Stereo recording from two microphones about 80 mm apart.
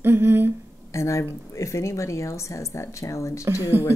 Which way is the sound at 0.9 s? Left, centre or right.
Left.